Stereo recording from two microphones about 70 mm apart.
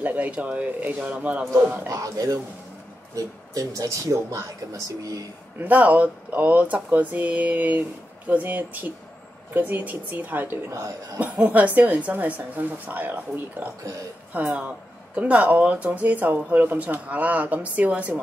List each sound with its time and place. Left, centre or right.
0.0 s speech: right
1.9 s speech: right
5.6 s speech: right